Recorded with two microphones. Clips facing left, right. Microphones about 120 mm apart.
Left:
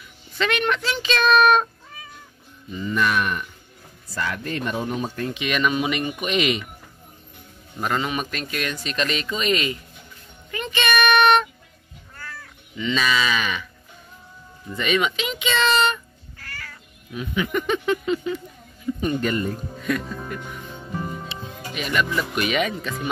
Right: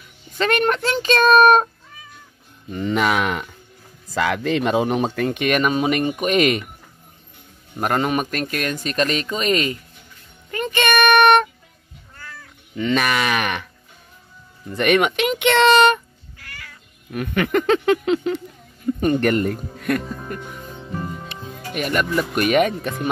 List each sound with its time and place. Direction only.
0.4 s speech: 45° right (ahead or behind)
2.7 s speech: 80° right
5.3 s speech: 50° right (ahead or behind)
7.8 s speech: 50° right (ahead or behind)
12.7 s speech: 55° right (ahead or behind)
14.8 s speech: 60° right (ahead or behind)
16.3 s cat: 15° right (ahead or behind)
17.1 s speech: 65° right (ahead or behind); by 18.4 s 80° right
19.1 s speech: 70° right (ahead or behind)
20.3 s speech: 45° right (ahead or behind)